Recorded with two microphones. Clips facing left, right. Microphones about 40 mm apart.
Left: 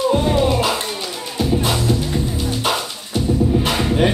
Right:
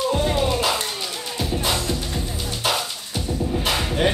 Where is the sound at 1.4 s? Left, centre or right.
Centre.